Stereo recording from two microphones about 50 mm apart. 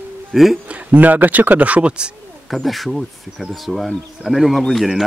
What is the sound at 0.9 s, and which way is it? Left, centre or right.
A man's voice, right.